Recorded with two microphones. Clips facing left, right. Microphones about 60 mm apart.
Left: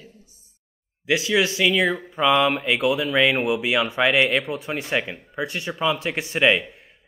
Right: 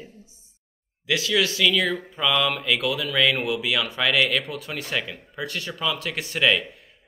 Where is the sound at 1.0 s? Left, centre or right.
Left.